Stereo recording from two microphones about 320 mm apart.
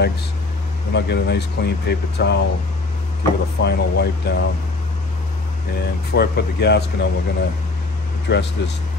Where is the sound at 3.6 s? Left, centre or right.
Left.